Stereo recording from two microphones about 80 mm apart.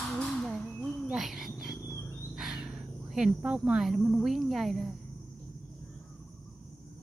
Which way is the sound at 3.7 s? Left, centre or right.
Centre.